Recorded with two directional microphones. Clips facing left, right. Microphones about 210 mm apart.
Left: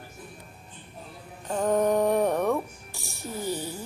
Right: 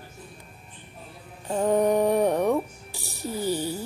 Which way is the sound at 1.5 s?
10° right (ahead or behind).